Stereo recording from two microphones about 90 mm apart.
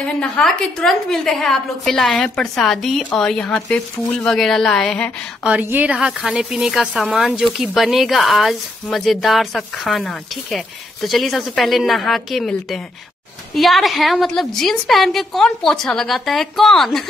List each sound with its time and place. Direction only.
0.0 s speech: 10° left (ahead or behind)
5.4 s a woman's voice: 15° right (ahead or behind)
5.9 s speech: 5° right (ahead or behind)